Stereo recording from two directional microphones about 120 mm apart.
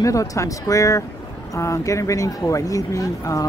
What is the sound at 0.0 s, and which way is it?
Speech, 30° left (ahead or behind).